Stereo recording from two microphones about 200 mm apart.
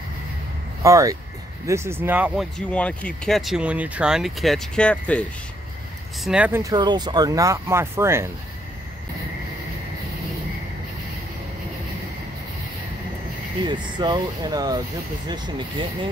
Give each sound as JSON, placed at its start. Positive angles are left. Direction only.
{"t": 0.8, "sound": "speech", "side_deg": -15}
{"t": 2.6, "sound": "speech", "side_deg": 5}
{"t": 6.2, "sound": "speech", "side_deg": -5}
{"t": 13.7, "sound": "speech", "side_deg": -25}